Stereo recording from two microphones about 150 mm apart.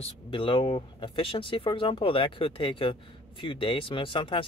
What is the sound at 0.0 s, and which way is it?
Speech, 35° left (ahead or behind).